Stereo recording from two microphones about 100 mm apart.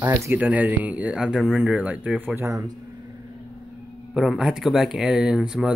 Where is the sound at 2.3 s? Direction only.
30° right (ahead or behind).